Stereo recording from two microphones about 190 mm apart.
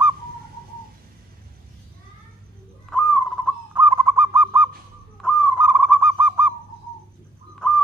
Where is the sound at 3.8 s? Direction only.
5° right (ahead or behind).